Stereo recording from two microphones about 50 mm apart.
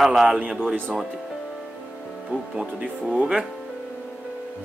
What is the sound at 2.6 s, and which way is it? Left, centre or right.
Speech, right.